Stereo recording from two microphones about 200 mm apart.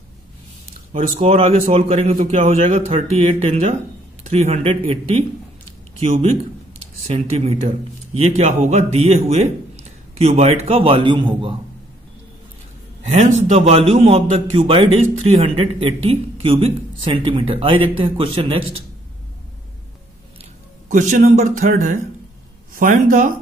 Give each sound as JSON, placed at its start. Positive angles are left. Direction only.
{"t": 0.9, "sound": "a man's voice", "side_deg": -30}
{"t": 7.1, "sound": "a man's voice", "side_deg": -30}
{"t": 13.1, "sound": "a man's voice", "side_deg": -30}
{"t": 20.9, "sound": "a man's voice", "side_deg": -40}